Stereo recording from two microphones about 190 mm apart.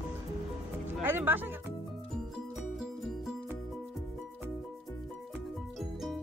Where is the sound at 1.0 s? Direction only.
10° right (ahead or behind).